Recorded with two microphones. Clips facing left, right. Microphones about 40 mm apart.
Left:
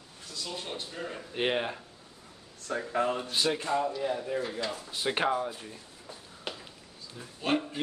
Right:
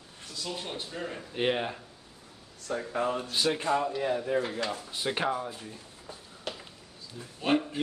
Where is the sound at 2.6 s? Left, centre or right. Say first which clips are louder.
Left 1 dB; left.